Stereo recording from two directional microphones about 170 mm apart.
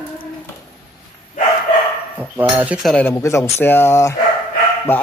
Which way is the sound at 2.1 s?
10° right (ahead or behind).